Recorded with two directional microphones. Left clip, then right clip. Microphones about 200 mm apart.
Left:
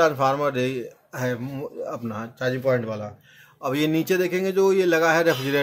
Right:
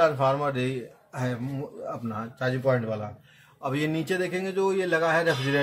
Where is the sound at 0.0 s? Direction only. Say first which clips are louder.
Left 3 dB; 35° left (ahead or behind).